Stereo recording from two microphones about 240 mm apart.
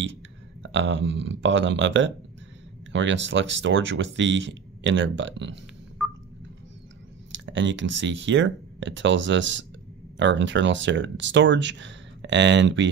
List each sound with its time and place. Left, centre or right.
0.6 s speech: right
7.3 s speech: right